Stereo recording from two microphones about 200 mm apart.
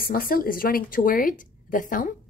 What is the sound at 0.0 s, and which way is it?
A woman's voice, 45° left (ahead or behind).